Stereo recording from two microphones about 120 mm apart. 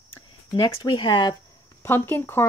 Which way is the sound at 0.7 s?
45° left (ahead or behind).